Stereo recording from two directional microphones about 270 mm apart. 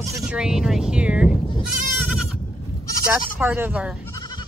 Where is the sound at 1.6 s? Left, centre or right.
Centre.